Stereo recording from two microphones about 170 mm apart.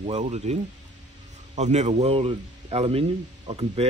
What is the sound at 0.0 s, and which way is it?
A man's voice, 40° right (ahead or behind).